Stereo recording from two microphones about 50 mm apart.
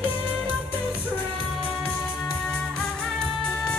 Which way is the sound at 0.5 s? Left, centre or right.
Right.